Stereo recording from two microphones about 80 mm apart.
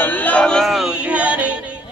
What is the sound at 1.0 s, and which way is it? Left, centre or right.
Music, centre.